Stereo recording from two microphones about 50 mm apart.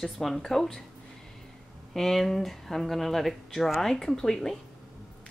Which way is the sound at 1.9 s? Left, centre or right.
Centre.